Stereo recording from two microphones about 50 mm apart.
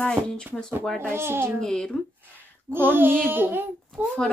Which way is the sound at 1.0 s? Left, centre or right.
Right.